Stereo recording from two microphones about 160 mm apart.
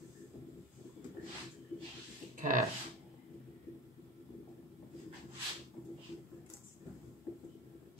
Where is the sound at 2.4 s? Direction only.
55° right (ahead or behind).